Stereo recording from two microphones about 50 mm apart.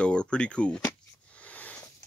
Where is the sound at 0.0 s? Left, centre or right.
Centre.